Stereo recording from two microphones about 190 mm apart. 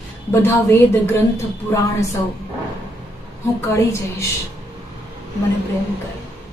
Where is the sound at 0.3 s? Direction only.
15° left (ahead or behind).